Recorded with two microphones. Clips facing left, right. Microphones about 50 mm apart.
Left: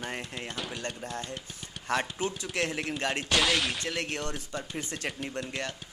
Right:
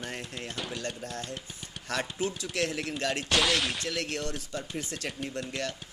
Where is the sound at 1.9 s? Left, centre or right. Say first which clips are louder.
Left 2 dB; left.